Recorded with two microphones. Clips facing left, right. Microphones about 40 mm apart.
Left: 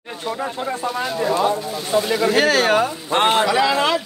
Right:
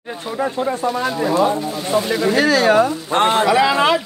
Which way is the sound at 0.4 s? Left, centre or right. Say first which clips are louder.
Right 7 dB; centre.